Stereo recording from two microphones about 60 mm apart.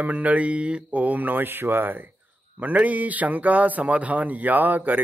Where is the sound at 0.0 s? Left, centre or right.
Right.